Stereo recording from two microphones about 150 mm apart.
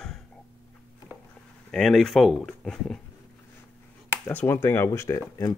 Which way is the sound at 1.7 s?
5° left (ahead or behind).